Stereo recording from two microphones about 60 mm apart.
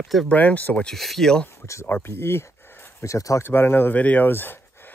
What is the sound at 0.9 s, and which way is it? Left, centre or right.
Speech, centre.